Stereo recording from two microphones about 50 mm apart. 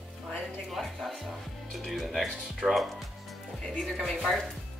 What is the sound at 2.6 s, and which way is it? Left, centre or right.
Speech, right.